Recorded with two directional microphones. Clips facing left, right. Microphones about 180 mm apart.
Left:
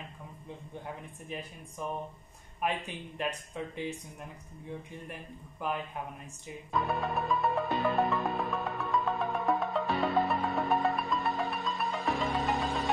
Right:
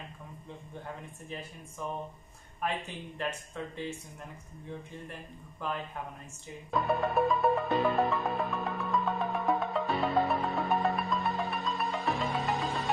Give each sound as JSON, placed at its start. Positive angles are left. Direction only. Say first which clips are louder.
{"t": 2.6, "sound": "speech", "louder": "left 1 dB", "side_deg": 15}
{"t": 5.1, "sound": "speech", "louder": "left 1 dB", "side_deg": 15}
{"t": 6.7, "sound": "music", "louder": "right 3 dB", "side_deg": 0}